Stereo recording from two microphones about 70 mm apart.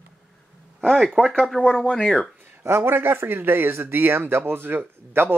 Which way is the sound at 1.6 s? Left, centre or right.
Centre.